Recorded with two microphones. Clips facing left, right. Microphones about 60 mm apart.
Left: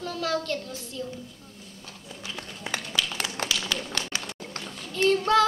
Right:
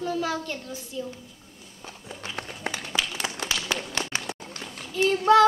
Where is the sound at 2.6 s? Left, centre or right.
Right.